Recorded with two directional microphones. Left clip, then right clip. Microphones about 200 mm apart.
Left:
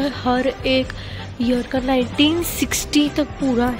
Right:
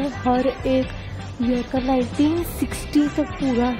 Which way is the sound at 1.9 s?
10° right (ahead or behind).